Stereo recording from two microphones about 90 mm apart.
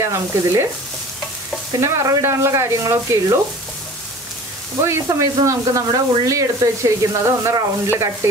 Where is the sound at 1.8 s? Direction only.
35° right (ahead or behind).